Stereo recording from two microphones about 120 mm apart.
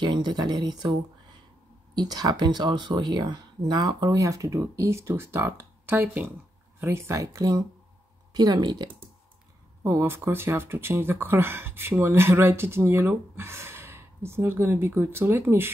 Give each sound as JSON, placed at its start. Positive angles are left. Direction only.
{"t": 0.0, "sound": "speech", "side_deg": -40}
{"t": 2.0, "sound": "speech", "side_deg": -35}
{"t": 9.8, "sound": "speech", "side_deg": -20}